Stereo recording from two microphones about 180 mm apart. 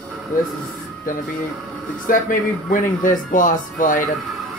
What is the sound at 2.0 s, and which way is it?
Speech, 50° left (ahead or behind).